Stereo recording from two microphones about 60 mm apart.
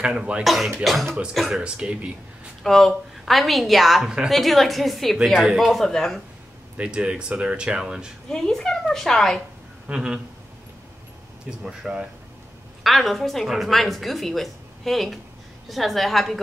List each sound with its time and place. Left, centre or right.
0.0 s speech: centre
0.4 s speech: centre
1.6 s speech: centre
2.6 s speech: centre
5.8 s a woman's voice: centre
6.8 s speech: centre
8.3 s a woman's voice: centre
9.8 s speech: centre
11.6 s speech: centre
12.8 s speech: centre